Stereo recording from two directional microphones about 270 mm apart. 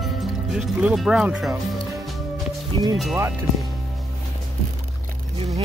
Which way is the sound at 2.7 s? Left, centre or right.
Centre.